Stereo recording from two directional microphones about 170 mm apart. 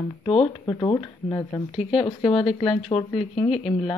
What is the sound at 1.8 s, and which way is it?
Speech, 35° left (ahead or behind).